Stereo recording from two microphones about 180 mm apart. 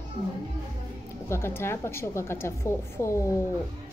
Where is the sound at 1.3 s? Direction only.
15° left (ahead or behind).